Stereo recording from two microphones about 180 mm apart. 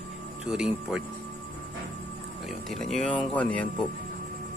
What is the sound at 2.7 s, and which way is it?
Speech, centre (ahead or behind).